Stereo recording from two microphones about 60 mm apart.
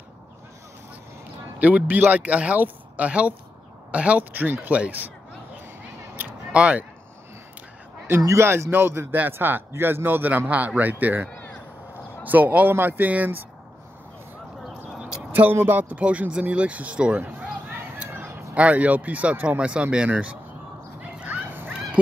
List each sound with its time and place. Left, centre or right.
1.6 s speech: right
6.5 s speech: right
8.4 s a man's voice: right
15.5 s speech: right
15.8 s speech: right
17.3 s a sound: right
17.9 s speech: right
21.0 s dog: right
22.0 s honk: centre